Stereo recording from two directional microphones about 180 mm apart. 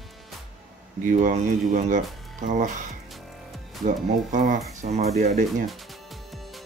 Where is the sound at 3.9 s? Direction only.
45° right (ahead or behind).